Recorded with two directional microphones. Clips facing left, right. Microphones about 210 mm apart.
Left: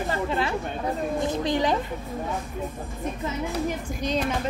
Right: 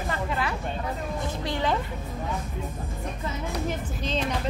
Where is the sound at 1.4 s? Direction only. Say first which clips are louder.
Left 2 dB; 15° left (ahead or behind).